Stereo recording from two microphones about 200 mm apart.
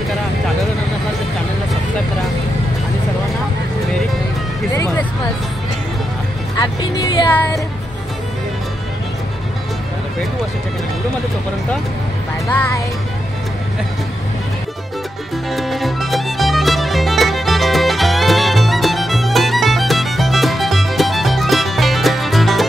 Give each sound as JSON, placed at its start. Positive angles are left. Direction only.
{"t": 4.7, "sound": "music", "side_deg": 15}
{"t": 6.6, "sound": "speech", "side_deg": 20}
{"t": 12.4, "sound": "music", "side_deg": 15}
{"t": 15.5, "sound": "music", "side_deg": 0}